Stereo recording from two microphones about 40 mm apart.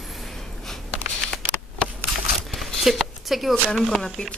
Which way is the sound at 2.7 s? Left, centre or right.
Centre.